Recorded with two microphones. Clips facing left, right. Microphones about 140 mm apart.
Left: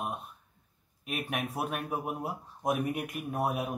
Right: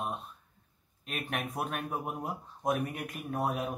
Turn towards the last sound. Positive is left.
turn(degrees=10)  # may be behind; listen again after turning